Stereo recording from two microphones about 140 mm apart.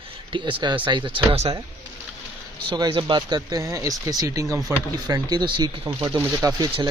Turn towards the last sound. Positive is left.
turn(degrees=-25)  # may be behind; listen again after turning